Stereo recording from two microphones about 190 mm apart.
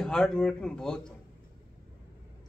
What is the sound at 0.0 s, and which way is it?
Speech, 5° left (ahead or behind).